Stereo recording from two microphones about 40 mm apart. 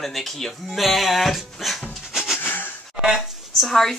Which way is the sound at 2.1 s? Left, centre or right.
Centre.